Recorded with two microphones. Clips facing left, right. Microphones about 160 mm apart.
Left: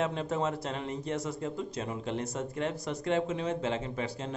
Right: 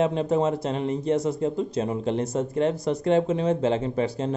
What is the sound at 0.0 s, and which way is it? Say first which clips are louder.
Speech: right 8 dB; 20° right (ahead or behind).